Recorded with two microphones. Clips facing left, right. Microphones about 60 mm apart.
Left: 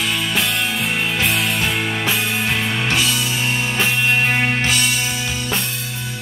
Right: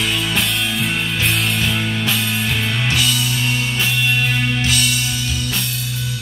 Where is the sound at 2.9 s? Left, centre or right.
Left.